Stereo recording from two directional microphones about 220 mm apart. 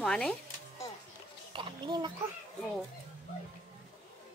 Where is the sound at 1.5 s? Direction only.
20° right (ahead or behind).